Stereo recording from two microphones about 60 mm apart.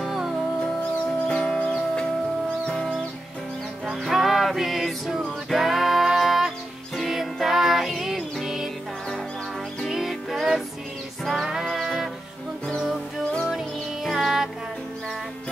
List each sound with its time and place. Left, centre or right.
0.0 s music: centre
1.2 s music: left
2.7 s music: centre
3.8 s music: centre
9.8 s music: centre
11.6 s music: centre
14.1 s music: centre